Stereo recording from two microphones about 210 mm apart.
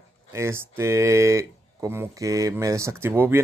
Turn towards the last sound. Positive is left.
turn(degrees=-10)  # may be behind; listen again after turning